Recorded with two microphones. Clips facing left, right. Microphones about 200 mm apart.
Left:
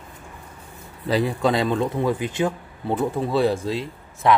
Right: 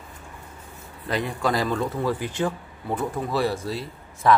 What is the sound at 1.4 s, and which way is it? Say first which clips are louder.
Speech: left 3 dB; 25° left (ahead or behind).